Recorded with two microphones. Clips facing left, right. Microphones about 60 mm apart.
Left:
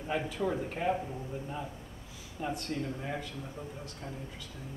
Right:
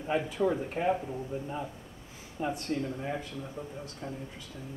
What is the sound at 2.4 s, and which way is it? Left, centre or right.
Speech, right.